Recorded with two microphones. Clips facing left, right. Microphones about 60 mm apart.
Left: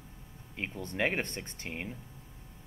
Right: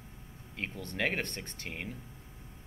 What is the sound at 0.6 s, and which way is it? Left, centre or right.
Speech, left.